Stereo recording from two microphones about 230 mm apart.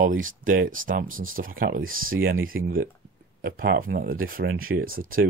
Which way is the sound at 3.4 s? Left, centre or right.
Right.